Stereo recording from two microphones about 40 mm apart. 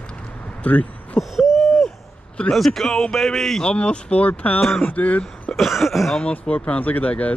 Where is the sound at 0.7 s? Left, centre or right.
Left.